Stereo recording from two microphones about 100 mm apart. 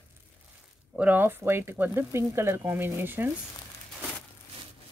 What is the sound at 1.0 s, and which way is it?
Speech, 20° right (ahead or behind).